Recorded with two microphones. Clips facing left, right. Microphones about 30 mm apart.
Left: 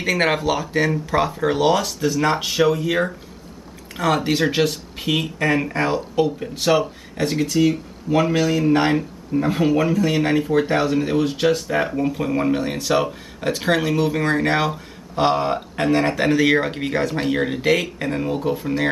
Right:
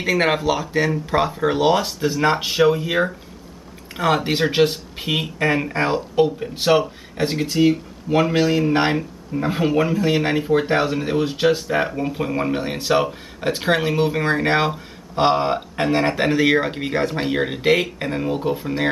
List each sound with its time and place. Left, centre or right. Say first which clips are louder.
0.0 s speech: right 1 dB; centre; by 8.6 s right
9.4 s speech: left 1 dB; centre